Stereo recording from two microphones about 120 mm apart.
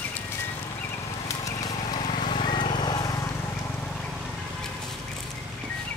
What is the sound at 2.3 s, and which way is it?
Vehicle, 45° left (ahead or behind).